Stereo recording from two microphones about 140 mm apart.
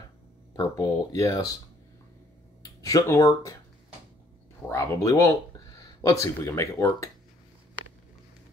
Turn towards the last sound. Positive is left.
turn(degrees=20)  # may be behind; listen again after turning